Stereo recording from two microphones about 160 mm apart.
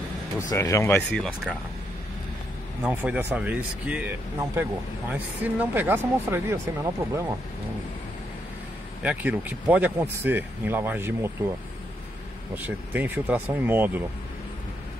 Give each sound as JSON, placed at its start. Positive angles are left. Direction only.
{"t": 0.4, "sound": "speech", "side_deg": 20}
{"t": 2.8, "sound": "speech", "side_deg": -10}
{"t": 5.1, "sound": "speech", "side_deg": -10}
{"t": 9.0, "sound": "speech", "side_deg": -10}
{"t": 12.6, "sound": "speech", "side_deg": -10}